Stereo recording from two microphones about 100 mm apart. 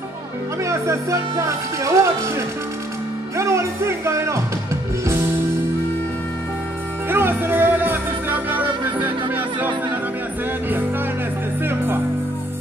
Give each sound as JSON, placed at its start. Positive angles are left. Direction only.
{"t": 0.7, "sound": "speech", "side_deg": -35}
{"t": 3.3, "sound": "music", "side_deg": -30}
{"t": 7.1, "sound": "music", "side_deg": -20}
{"t": 11.6, "sound": "music", "side_deg": -20}